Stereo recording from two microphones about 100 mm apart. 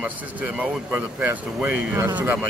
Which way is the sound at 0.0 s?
15° right (ahead or behind).